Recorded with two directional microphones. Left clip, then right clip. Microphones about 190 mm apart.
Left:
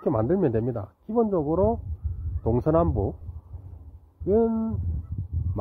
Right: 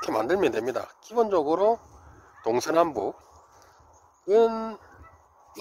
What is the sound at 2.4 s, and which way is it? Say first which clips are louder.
Speech: even; 10° right (ahead or behind).